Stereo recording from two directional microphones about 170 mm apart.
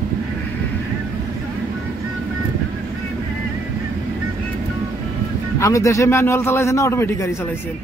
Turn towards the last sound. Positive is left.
turn(degrees=15)  # may be behind; listen again after turning